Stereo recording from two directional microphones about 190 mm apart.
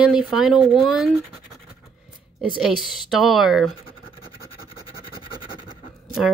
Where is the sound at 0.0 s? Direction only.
5° right (ahead or behind).